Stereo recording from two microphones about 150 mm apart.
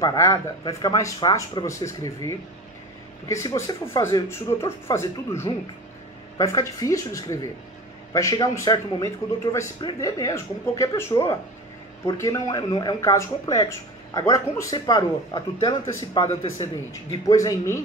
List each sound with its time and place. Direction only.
0.0 s speech: 25° left (ahead or behind)
3.5 s speech: 20° left (ahead or behind)
17.4 s speech: 20° left (ahead or behind)